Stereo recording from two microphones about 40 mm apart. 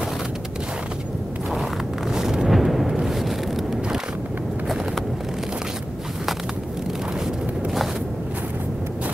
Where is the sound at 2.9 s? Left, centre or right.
Centre.